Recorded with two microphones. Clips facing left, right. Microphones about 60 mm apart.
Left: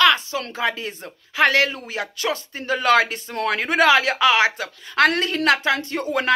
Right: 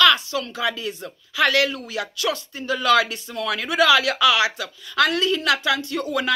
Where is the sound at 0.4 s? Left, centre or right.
Left.